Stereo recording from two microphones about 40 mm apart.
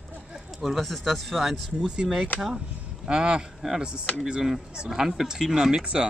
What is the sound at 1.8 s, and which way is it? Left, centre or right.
Speech, centre.